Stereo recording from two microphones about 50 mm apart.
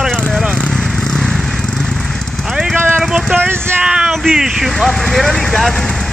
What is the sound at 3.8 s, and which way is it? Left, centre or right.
Speech, centre.